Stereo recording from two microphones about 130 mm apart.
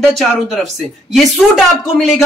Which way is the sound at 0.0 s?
Centre (ahead or behind).